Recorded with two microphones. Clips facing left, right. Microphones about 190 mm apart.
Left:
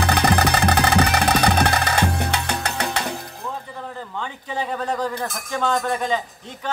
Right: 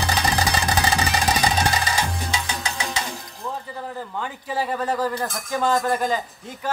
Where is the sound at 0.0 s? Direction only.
60° left (ahead or behind).